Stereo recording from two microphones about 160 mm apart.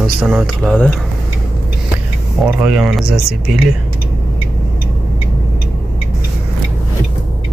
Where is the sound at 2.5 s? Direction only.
5° right (ahead or behind).